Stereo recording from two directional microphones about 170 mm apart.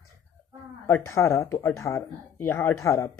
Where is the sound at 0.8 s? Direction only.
15° left (ahead or behind).